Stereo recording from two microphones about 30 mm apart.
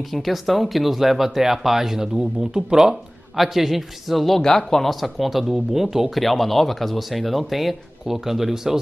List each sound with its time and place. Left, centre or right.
0.1 s speech: centre
2.0 s speech: right
3.3 s speech: centre
4.4 s speech: centre
4.8 s speech: centre
6.1 s speech: centre